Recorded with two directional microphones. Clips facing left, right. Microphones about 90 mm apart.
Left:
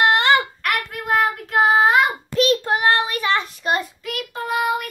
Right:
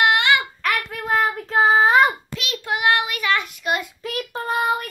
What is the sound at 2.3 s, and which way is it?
Child singing, 40° left (ahead or behind).